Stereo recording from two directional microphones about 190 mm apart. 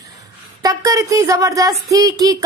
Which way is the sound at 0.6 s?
15° right (ahead or behind).